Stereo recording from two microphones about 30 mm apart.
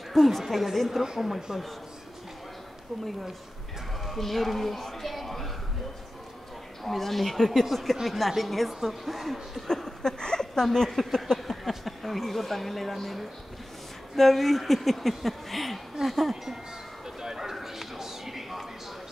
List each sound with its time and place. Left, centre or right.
0.1 s speech: centre
4.0 s a sound: centre
6.8 s speech: centre
9.6 s speech: centre
10.0 s speech: left
10.9 s speech: centre
17.0 s a sound: centre